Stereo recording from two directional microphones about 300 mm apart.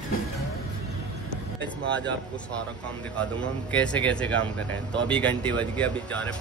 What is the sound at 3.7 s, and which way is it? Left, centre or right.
Speech, centre.